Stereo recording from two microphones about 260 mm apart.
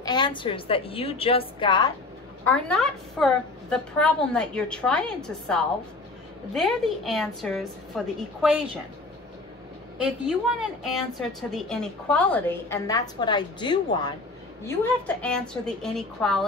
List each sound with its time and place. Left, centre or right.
0.0 s a woman's voice: centre
2.4 s a woman's voice: centre
9.9 s a woman's voice: centre
14.8 s a woman's voice: centre